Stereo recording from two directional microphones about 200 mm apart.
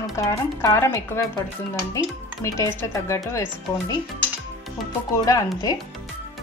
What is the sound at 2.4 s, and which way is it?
Speech, 15° left (ahead or behind).